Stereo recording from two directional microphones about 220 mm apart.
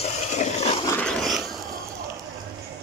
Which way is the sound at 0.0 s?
30° left (ahead or behind).